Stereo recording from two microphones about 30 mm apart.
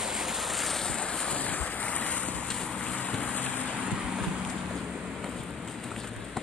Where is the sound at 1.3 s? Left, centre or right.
Left.